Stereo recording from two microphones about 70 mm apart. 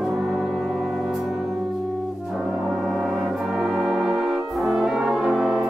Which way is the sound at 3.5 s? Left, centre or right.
Centre.